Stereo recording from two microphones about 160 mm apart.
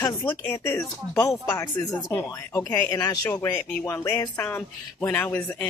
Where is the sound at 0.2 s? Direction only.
10° left (ahead or behind).